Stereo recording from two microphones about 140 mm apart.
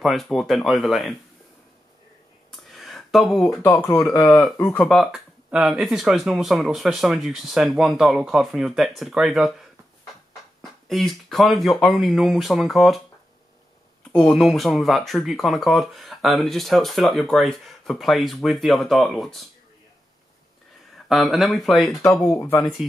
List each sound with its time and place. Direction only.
0.0 s speech: centre (ahead or behind)
2.5 s a sound: centre (ahead or behind)
3.6 s speech: 20° left (ahead or behind)
4.7 s speech: centre (ahead or behind)
10.6 s speech: centre (ahead or behind)
14.3 s speech: centre (ahead or behind)
21.1 s speech: centre (ahead or behind)
22.2 s speech: 20° left (ahead or behind)